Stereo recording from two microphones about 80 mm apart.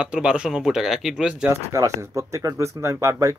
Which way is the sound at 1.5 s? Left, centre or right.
Right.